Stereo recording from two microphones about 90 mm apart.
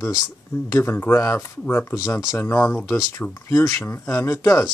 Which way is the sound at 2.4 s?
25° left (ahead or behind).